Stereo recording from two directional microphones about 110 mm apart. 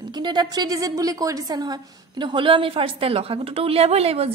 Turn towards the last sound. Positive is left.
turn(degrees=-70)  # may be behind; listen again after turning